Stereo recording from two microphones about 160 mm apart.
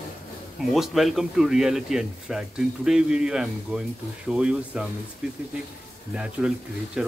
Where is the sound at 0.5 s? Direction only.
Centre (ahead or behind).